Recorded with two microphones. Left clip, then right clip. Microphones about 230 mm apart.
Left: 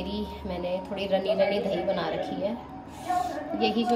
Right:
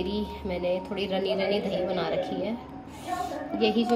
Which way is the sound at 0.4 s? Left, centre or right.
Right.